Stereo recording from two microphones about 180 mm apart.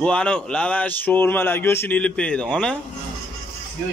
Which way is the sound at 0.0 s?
5° left (ahead or behind).